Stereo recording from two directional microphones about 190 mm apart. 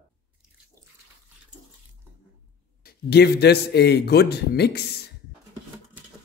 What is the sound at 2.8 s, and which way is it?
A man's voice, 60° left (ahead or behind).